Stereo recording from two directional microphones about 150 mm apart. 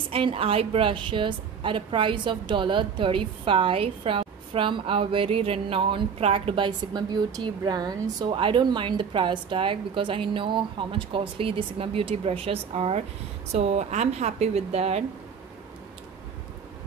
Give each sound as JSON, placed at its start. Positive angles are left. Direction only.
{"t": 0.1, "sound": "a woman's voice", "side_deg": -35}